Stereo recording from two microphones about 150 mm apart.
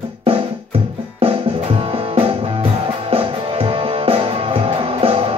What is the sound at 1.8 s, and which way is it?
Music, 40° right (ahead or behind).